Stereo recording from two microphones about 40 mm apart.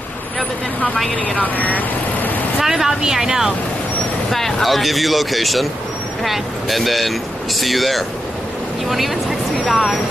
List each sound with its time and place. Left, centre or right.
1.2 s speech: left
2.6 s speech: centre
4.3 s speech: centre